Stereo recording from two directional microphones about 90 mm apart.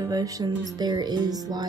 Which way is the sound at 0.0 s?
45° right (ahead or behind).